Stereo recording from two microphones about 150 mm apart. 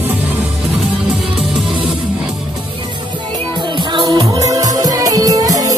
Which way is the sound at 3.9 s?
30° right (ahead or behind).